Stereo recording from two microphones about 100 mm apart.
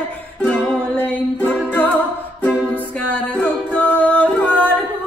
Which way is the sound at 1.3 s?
15° left (ahead or behind).